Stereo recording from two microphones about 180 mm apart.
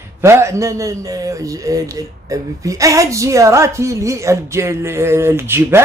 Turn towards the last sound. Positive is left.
turn(degrees=-15)  # may be behind; listen again after turning